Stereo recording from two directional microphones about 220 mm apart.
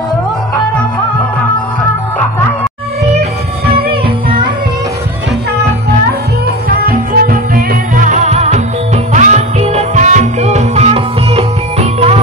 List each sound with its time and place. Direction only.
6.9 s music: 40° right (ahead or behind)